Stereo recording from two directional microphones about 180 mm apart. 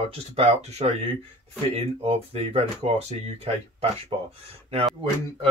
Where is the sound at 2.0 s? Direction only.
35° right (ahead or behind).